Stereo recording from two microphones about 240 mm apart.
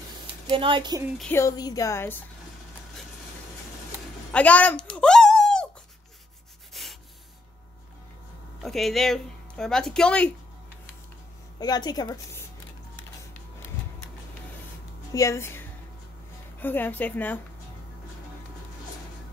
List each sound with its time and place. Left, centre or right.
0.5 s a woman's voice: right
1.0 s speech: centre
1.3 s a woman's voice: centre
4.3 s a sound: centre
6.7 s a sound: centre
8.6 s speech: centre
11.6 s a woman's voice: centre
15.1 s a woman's voice: centre